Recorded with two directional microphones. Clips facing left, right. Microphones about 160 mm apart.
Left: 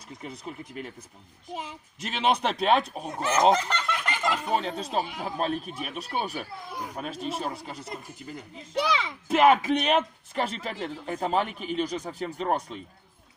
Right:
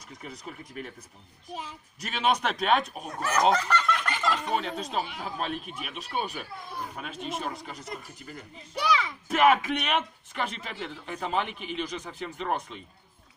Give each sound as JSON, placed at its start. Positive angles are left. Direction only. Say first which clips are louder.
{"t": 0.2, "sound": "speech", "louder": "left 3 dB", "side_deg": 25}
{"t": 4.6, "sound": "speech", "louder": "left 2 dB", "side_deg": 35}
{"t": 6.7, "sound": "speech", "louder": "even", "side_deg": 15}
{"t": 7.0, "sound": "speech", "louder": "left 4 dB", "side_deg": 35}